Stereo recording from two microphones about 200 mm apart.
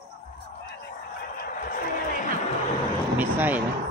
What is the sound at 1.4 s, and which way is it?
Fowl, 45° left (ahead or behind).